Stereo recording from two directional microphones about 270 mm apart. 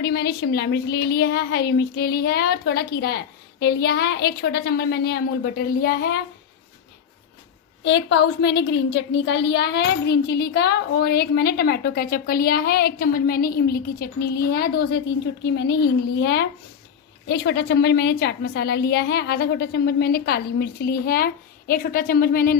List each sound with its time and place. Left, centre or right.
0.0 s a woman's voice: left
7.8 s a woman's voice: left